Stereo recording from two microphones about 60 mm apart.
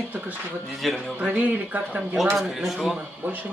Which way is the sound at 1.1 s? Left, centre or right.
Right.